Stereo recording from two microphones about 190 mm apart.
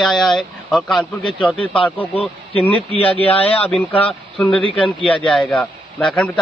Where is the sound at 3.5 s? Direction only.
5° left (ahead or behind).